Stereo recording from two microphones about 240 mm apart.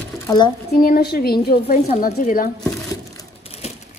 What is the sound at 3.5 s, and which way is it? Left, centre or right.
Crushing, left.